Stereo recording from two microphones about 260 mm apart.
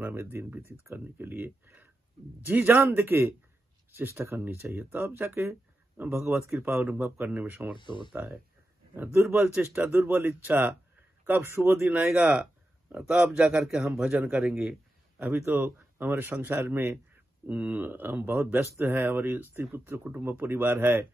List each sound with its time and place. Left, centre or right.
0.0 s a man's voice: centre
7.7 s speech: centre
8.1 s a man's voice: centre